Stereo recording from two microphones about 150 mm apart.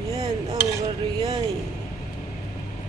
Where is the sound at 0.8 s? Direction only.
40° right (ahead or behind).